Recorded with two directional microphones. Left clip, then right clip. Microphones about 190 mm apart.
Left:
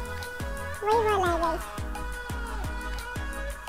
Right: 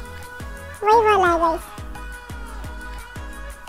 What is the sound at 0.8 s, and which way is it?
Music, 30° right (ahead or behind).